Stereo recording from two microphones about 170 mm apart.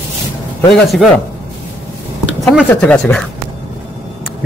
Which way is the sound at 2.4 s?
5° left (ahead or behind).